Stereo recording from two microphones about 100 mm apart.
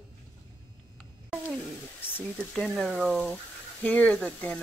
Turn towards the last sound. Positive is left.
turn(degrees=10)  # may be behind; listen again after turning